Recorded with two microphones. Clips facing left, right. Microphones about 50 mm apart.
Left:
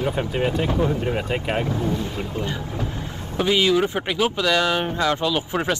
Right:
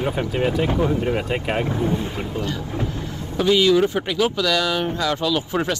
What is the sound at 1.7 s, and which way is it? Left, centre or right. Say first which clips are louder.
Speech: right 2 dB; right.